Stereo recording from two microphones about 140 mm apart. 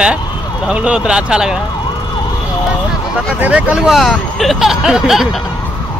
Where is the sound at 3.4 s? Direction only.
10° right (ahead or behind).